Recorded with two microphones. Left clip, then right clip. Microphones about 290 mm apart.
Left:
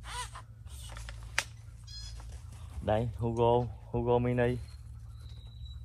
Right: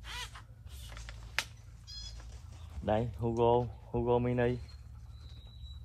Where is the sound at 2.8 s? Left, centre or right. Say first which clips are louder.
Left 1 dB; left.